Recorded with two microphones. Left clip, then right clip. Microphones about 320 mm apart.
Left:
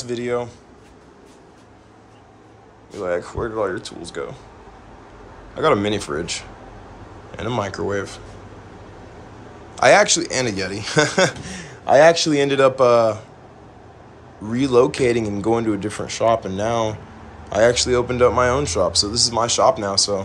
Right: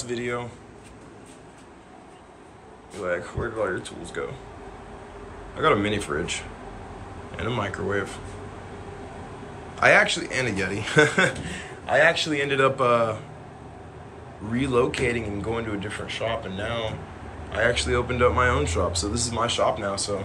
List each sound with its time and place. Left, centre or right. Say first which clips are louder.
0.1 s speech: left 6 dB; centre
3.0 s speech: left 5 dB; centre
5.6 s speech: left 4 dB; centre
9.8 s speech: left 5 dB; centre
11.4 s speech: left 9 dB; centre
14.5 s speech: left 7 dB; centre